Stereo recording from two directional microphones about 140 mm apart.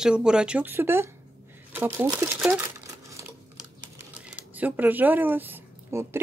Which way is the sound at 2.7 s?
20° right (ahead or behind).